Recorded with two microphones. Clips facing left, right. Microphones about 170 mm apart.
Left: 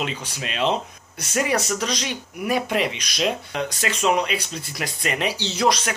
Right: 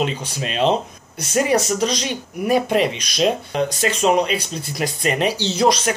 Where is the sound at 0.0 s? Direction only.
35° right (ahead or behind).